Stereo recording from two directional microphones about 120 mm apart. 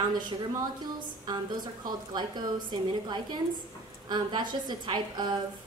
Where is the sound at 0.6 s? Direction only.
35° right (ahead or behind).